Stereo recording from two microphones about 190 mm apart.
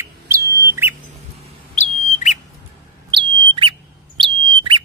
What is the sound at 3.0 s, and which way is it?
Bird, 25° right (ahead or behind).